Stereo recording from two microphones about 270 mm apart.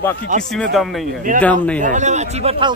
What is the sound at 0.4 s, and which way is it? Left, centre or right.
Speech, centre.